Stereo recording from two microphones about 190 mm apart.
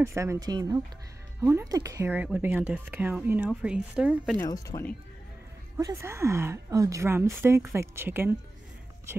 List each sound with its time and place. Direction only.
0.0 s speech: 15° right (ahead or behind)
4.4 s speech: 15° left (ahead or behind)
5.8 s speech: 15° right (ahead or behind)